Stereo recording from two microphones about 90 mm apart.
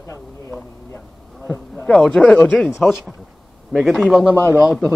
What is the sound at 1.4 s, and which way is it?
Speech, 15° left (ahead or behind).